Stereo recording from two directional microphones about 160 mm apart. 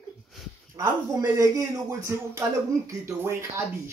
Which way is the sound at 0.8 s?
20° right (ahead or behind).